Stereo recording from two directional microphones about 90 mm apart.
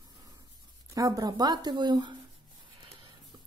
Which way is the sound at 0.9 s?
40° right (ahead or behind).